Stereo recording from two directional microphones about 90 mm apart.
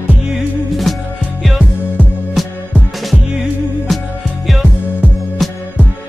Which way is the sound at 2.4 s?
Centre (ahead or behind).